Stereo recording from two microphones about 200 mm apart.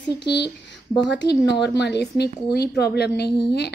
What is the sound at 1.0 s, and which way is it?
A woman's voice, 60° left (ahead or behind).